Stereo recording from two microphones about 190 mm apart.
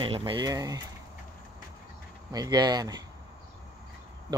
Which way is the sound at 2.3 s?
20° right (ahead or behind).